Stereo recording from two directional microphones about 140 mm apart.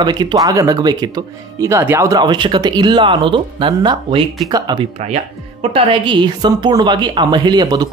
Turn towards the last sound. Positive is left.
turn(degrees=-30)  # may be behind; listen again after turning